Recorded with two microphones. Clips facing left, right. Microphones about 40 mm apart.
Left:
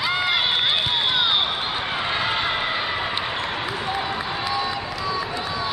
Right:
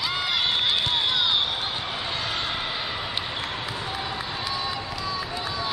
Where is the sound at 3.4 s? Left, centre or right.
Centre.